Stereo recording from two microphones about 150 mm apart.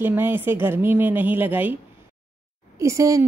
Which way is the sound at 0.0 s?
15° right (ahead or behind).